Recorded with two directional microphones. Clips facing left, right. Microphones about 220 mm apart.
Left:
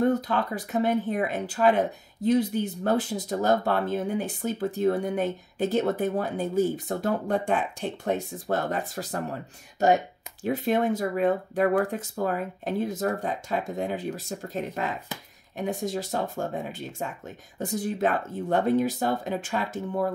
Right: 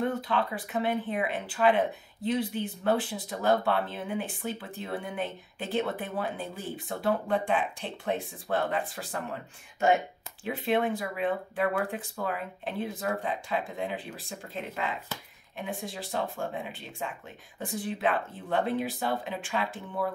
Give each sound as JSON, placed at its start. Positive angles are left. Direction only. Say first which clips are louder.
{"t": 0.0, "sound": "speech", "louder": "left 5 dB", "side_deg": 40}